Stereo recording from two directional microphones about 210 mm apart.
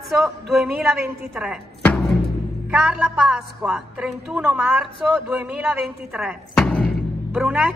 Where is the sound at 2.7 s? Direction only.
5° right (ahead or behind).